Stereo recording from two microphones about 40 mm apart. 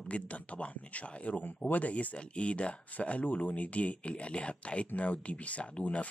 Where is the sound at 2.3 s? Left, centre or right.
Left.